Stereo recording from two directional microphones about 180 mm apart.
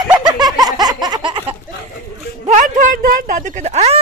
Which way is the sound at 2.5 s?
45° right (ahead or behind).